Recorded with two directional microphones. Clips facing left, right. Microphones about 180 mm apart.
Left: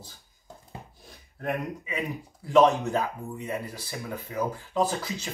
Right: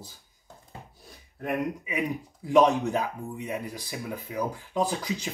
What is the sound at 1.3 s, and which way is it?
Speech, 10° right (ahead or behind).